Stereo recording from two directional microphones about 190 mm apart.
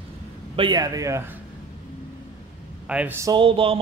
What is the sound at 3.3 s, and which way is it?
Speech, 30° right (ahead or behind).